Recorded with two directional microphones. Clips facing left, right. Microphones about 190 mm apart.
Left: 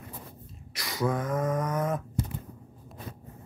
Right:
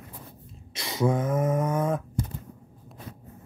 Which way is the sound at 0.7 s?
25° right (ahead or behind).